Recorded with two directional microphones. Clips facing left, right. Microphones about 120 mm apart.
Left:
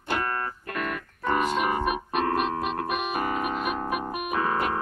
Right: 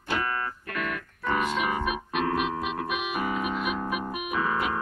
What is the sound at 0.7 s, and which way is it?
Music, 40° left (ahead or behind).